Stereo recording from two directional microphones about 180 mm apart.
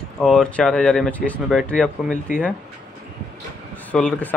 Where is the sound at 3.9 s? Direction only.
5° left (ahead or behind).